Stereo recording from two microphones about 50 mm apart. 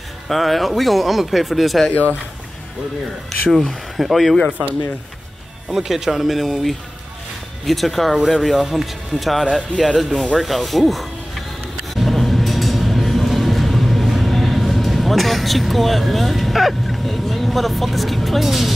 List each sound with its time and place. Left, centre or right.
0.3 s speech: centre
3.3 s speech: centre
4.5 s speech: right
5.7 s speech: centre
11.9 s a sound: centre